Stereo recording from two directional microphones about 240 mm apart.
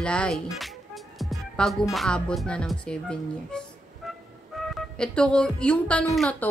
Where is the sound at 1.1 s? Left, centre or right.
Centre.